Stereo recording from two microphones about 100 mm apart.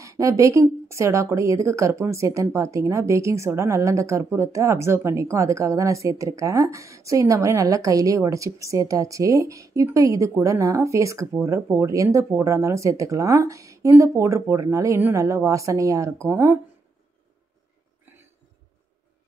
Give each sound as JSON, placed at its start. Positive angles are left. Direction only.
{"t": 0.0, "sound": "a woman's voice", "side_deg": -30}